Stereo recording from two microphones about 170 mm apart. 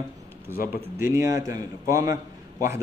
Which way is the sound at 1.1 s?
20° right (ahead or behind).